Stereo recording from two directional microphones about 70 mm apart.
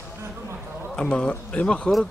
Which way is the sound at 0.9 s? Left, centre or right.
Centre.